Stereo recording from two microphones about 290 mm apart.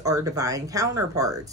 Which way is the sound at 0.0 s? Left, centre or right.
Centre.